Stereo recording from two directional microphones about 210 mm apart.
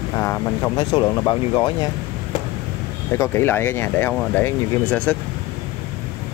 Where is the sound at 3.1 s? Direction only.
10° left (ahead or behind).